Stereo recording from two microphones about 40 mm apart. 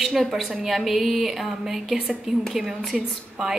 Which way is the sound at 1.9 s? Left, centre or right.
Right.